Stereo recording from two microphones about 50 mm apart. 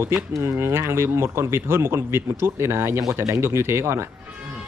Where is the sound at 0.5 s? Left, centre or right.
Right.